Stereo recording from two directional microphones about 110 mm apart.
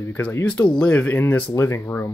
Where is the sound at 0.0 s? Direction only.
20° left (ahead or behind).